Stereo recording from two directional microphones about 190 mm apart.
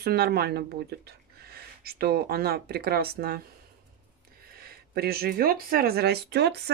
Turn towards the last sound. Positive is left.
turn(degrees=-60)  # may be behind; listen again after turning